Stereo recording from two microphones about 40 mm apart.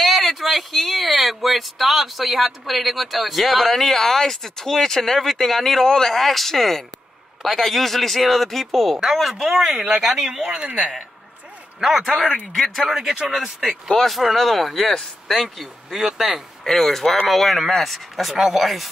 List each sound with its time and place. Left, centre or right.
0.0 s speech: centre
9.7 s speech: right
10.0 s speech: centre
13.0 s speech: centre
13.8 s speech: centre
16.6 s speech: centre
18.3 s speech: centre